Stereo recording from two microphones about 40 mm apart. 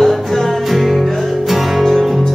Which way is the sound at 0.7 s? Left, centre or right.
Centre.